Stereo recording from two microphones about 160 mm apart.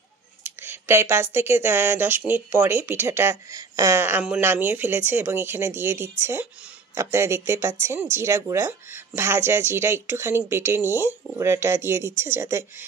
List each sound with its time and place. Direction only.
0.4 s speech: 15° right (ahead or behind)